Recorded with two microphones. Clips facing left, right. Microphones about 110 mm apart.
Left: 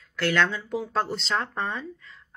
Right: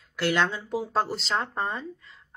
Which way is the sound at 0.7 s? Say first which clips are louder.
Right 2 dB; 15° right (ahead or behind).